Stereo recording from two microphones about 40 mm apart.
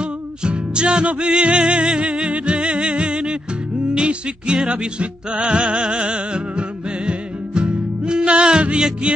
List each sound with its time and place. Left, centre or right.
0.0 s music: right